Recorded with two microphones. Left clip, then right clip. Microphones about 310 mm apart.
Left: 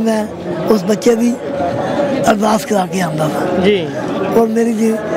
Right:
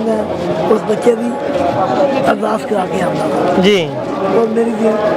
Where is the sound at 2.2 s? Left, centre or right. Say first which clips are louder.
Left 1 dB; left.